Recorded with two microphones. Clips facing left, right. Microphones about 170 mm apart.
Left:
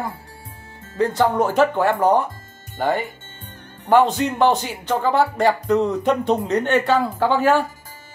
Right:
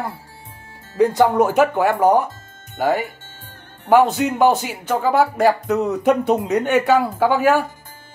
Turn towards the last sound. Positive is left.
turn(degrees=-10)  # may be behind; listen again after turning